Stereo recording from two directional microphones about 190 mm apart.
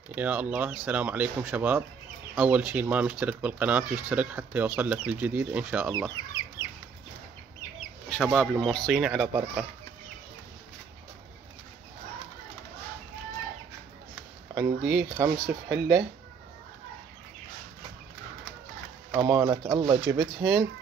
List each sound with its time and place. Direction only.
0.1 s speech: 10° right (ahead or behind)
5.9 s speech: 20° right (ahead or behind)
8.1 s speech: 5° left (ahead or behind)
14.5 s speech: 20° right (ahead or behind)
19.2 s speech: 15° right (ahead or behind)